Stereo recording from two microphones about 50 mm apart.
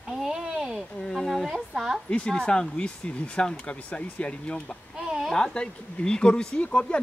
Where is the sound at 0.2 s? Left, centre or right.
Centre.